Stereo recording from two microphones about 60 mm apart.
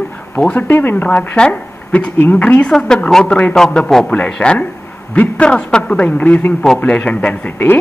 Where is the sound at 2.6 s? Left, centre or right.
Centre.